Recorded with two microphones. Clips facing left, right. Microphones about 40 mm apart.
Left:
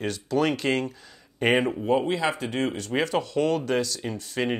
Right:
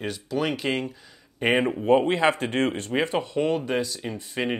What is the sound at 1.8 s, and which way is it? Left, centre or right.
Speech, right.